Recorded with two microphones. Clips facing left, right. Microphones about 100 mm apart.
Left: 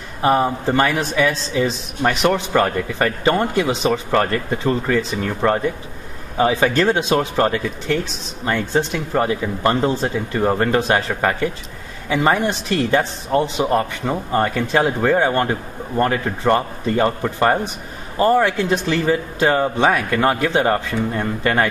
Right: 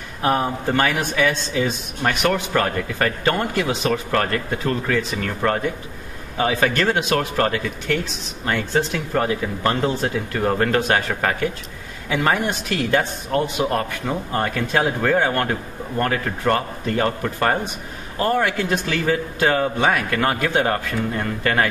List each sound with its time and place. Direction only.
0.2 s speech: 5° left (ahead or behind)
2.2 s speech: 15° left (ahead or behind)
6.6 s speech: 5° left (ahead or behind)
7.0 s speech: 15° left (ahead or behind)
10.3 s speech: 15° left (ahead or behind)
12.4 s speech: 5° right (ahead or behind)
12.9 s speech: 20° left (ahead or behind)
13.7 s speech: 5° left (ahead or behind)
18.1 s speech: 25° left (ahead or behind)
18.9 s speech: 5° left (ahead or behind)